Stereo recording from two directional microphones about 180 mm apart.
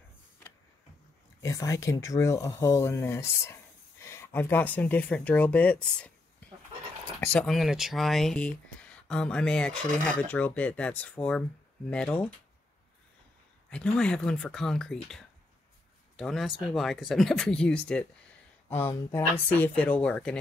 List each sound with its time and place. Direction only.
1.4 s speech: 15° left (ahead or behind)
7.2 s speech: 5° left (ahead or behind)
13.7 s speech: 5° left (ahead or behind)